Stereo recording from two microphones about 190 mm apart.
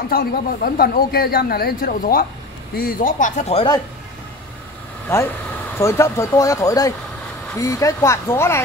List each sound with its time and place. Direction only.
0.1 s speech: 50° left (ahead or behind); by 3.6 s 35° left (ahead or behind)
5.1 s speech: 15° left (ahead or behind)